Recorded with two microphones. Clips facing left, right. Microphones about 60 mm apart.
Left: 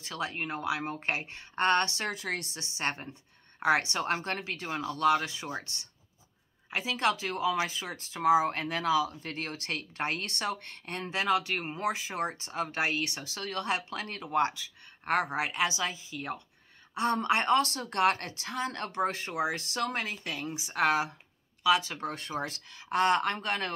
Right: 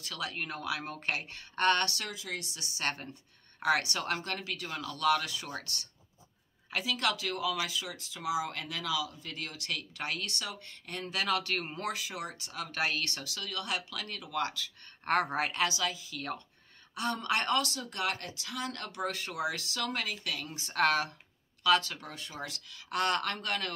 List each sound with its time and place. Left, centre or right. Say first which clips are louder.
0.0 s a woman's voice: left 3 dB; left
2.0 s a woman's voice: left 5 dB; left
11.1 s a woman's voice: left 3 dB; left
13.3 s speech: left 6 dB; left
15.0 s speech: even; centre
15.7 s a woman's voice: left 1 dB; left
16.9 s a woman's voice: left 4 dB; left
17.6 s speech: left 6 dB; left
20.5 s speech: left 1 dB; centre
22.0 s a woman's voice: left 7 dB; left